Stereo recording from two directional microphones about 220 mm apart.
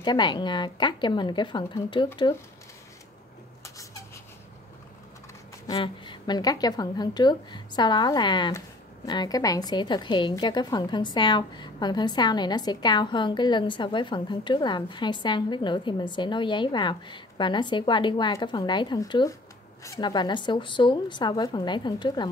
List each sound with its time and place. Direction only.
0.0 s a woman's voice: 20° left (ahead or behind)
3.6 s vehicle: 15° left (ahead or behind)
5.7 s a woman's voice: 20° left (ahead or behind)